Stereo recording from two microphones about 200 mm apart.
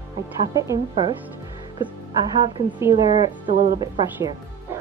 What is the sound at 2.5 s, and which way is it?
Speech, 20° right (ahead or behind).